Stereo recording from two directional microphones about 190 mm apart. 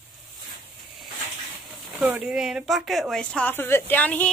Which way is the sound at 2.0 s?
5° right (ahead or behind).